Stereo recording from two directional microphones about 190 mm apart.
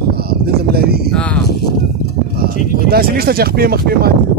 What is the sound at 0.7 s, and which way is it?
Speech, 55° right (ahead or behind).